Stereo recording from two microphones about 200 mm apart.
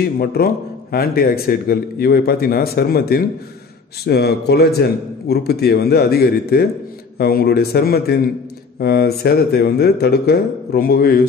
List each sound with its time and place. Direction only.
0.2 s speech: 50° left (ahead or behind)